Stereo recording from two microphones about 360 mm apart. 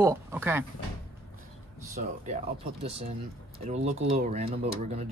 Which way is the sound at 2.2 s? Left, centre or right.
Centre.